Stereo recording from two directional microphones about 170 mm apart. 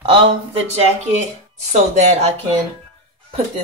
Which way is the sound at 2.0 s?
40° right (ahead or behind).